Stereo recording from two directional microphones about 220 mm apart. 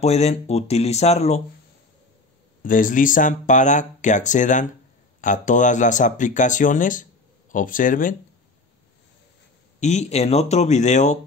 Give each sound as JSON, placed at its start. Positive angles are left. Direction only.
{"t": 0.0, "sound": "speech", "side_deg": 30}
{"t": 2.6, "sound": "speech", "side_deg": 35}
{"t": 9.8, "sound": "speech", "side_deg": 30}